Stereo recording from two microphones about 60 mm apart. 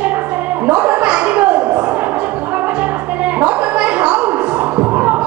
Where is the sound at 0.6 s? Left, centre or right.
Right.